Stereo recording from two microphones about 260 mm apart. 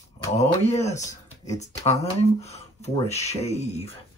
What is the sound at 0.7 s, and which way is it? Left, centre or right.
Speech, left.